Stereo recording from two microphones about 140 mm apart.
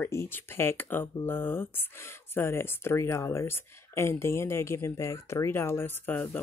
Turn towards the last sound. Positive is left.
turn(degrees=15)  # may be behind; listen again after turning